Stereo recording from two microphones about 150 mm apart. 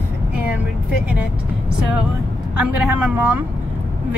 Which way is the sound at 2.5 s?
10° right (ahead or behind).